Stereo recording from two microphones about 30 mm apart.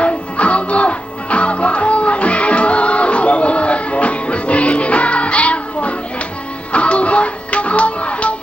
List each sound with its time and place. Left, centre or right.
0.0 s music: left